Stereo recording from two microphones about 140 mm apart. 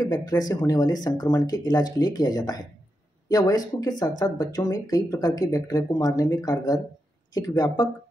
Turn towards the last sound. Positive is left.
turn(degrees=30)  # may be behind; listen again after turning